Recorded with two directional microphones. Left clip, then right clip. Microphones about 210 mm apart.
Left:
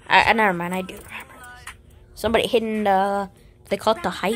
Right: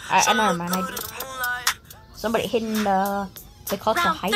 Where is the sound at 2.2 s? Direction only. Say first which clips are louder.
Left 4 dB; 15° left (ahead or behind).